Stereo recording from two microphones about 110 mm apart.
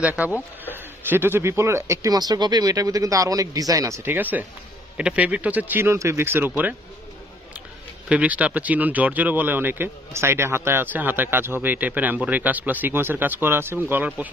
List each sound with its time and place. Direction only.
0.0 s speech: 10° right (ahead or behind)
8.1 s speech: 10° right (ahead or behind)